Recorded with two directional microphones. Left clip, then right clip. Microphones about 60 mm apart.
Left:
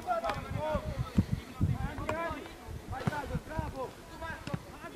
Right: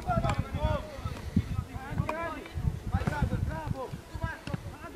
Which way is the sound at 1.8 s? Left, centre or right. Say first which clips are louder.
Right 2 dB; centre.